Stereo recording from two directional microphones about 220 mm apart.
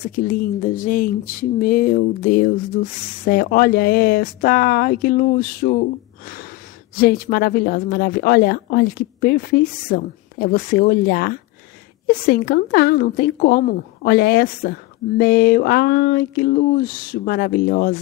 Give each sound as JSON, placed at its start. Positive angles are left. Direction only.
{"t": 0.3, "sound": "a woman's voice", "side_deg": 40}